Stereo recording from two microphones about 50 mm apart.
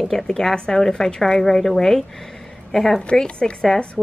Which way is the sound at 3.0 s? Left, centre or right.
Centre.